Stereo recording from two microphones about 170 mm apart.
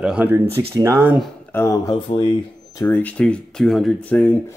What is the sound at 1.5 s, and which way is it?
Speech, 15° left (ahead or behind).